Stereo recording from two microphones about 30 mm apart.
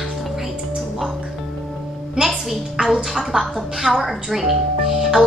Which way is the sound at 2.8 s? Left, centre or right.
Centre.